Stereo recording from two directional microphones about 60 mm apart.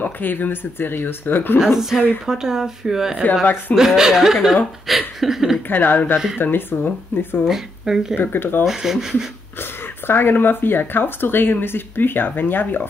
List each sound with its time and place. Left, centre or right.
0.0 s speech: left
1.6 s speech: centre
4.8 s chuckle: centre
5.7 s speech: left
6.1 s speech: centre
6.4 s speech: left
7.4 s speech: centre
8.2 s speech: left
8.6 s speech: centre
9.6 s speech: left